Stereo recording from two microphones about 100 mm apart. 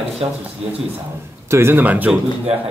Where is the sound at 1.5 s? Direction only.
25° right (ahead or behind).